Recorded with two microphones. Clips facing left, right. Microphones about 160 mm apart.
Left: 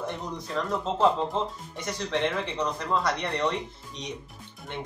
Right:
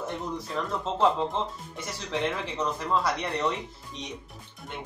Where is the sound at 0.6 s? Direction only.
5° right (ahead or behind).